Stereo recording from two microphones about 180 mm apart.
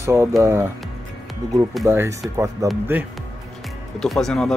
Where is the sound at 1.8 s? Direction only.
15° right (ahead or behind).